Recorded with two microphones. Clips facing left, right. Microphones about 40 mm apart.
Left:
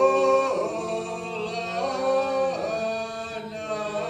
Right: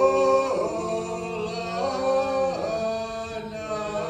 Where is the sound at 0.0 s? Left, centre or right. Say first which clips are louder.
Even; left.